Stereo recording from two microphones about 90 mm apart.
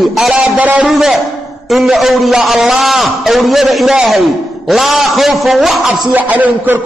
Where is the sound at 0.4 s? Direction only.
15° right (ahead or behind).